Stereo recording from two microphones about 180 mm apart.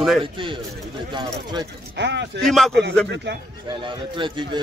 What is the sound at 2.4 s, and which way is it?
Speech, centre (ahead or behind).